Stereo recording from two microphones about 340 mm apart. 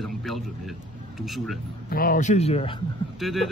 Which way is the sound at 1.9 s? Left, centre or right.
Left.